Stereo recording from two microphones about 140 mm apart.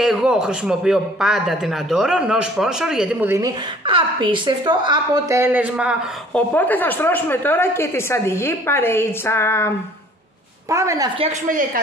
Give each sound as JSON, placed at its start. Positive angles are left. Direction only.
{"t": 0.0, "sound": "a man's voice", "side_deg": -5}
{"t": 3.3, "sound": "a woman's voice", "side_deg": -20}
{"t": 3.8, "sound": "a woman's voice", "side_deg": -35}
{"t": 6.3, "sound": "a woman's voice", "side_deg": 15}
{"t": 10.7, "sound": "a woman's voice", "side_deg": -20}